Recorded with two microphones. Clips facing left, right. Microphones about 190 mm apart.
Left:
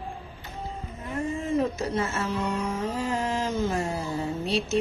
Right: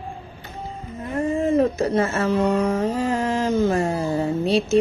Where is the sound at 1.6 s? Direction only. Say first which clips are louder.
Right 7 dB; 60° right (ahead or behind).